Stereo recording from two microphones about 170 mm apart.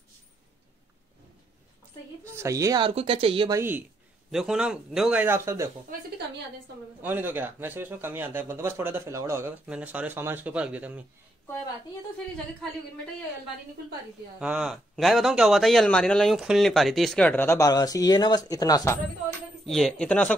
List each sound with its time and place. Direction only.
2.2 s a woman's voice: 15° right (ahead or behind)
2.9 s speech: 35° right (ahead or behind)
3.5 s a man's voice: 10° right (ahead or behind)
5.9 s speech: 50° right (ahead or behind)
7.0 s speech: 10° right (ahead or behind)
14.4 s a man's voice: 5° right (ahead or behind); by 18.9 s 20° left (ahead or behind)
19.6 s a man's voice: centre (ahead or behind)